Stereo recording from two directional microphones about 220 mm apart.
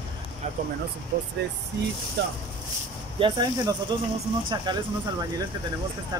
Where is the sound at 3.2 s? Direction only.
20° right (ahead or behind).